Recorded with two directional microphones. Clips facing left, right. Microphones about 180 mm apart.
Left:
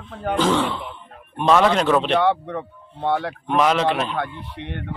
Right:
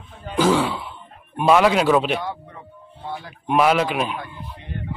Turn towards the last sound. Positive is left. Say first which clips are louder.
# left 3 dB
turn(degrees=70)  # may be behind; listen again after turning